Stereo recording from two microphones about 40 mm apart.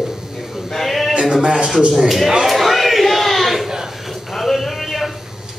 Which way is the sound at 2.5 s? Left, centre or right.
Centre.